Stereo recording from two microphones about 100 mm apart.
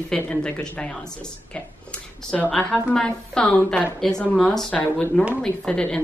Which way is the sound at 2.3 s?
5° left (ahead or behind).